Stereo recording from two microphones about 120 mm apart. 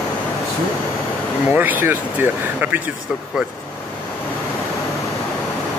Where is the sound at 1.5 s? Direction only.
15° right (ahead or behind).